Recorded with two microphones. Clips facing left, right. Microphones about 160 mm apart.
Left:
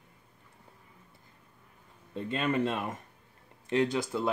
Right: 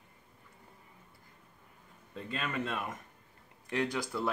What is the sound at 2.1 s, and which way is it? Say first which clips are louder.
Speech: left 7 dB; 30° left (ahead or behind).